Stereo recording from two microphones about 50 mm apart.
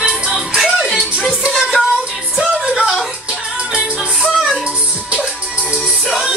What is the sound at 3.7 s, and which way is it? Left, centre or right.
Music, centre.